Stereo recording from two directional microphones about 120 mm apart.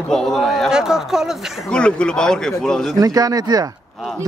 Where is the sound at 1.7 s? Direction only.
10° left (ahead or behind).